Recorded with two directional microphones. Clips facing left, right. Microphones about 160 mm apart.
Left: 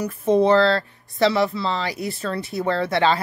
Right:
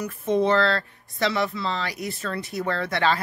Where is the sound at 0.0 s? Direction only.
35° left (ahead or behind).